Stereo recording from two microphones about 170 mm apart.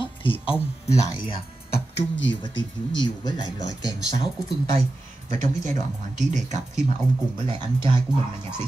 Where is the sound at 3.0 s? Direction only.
25° left (ahead or behind).